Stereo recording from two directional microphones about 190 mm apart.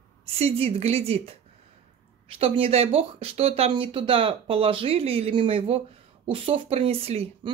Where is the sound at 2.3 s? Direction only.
30° right (ahead or behind).